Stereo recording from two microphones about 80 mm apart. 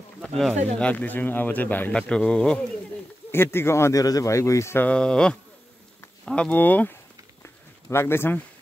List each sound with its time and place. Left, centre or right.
0.2 s speech: centre
0.7 s a man's voice: centre
3.3 s speech: left
4.0 s speech: left
4.7 s a man's voice: centre
7.4 s a sound: left